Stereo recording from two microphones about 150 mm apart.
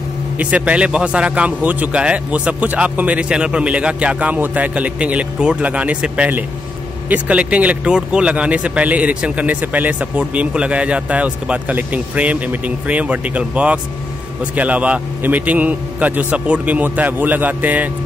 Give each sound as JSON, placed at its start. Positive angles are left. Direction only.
{"t": 0.4, "sound": "speech", "side_deg": -10}